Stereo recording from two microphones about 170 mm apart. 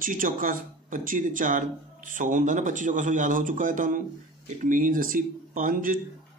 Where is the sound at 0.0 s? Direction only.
55° right (ahead or behind).